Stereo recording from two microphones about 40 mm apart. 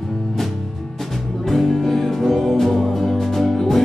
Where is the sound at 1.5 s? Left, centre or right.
Centre.